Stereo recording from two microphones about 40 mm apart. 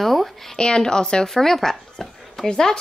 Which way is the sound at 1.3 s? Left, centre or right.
Centre.